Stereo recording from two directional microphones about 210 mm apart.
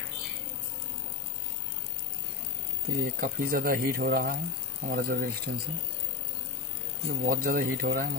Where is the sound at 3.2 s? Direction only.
45° right (ahead or behind).